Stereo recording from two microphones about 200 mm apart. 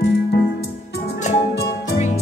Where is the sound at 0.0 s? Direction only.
55° left (ahead or behind).